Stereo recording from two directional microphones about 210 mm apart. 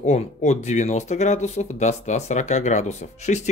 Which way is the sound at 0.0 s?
35° left (ahead or behind).